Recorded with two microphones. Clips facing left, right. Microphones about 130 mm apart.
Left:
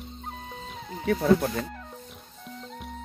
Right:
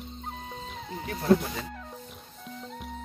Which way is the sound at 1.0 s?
65° left (ahead or behind).